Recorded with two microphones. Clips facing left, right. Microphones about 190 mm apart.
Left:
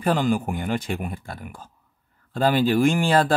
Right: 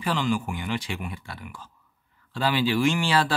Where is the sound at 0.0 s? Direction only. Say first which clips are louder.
Left 4 dB; 50° left (ahead or behind).